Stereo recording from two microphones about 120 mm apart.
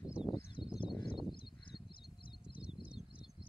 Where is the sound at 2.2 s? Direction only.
45° left (ahead or behind).